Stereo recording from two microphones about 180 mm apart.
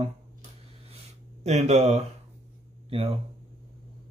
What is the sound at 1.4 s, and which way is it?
Speech, 40° right (ahead or behind).